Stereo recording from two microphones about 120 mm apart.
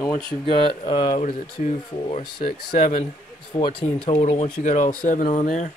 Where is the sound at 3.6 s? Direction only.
45° left (ahead or behind).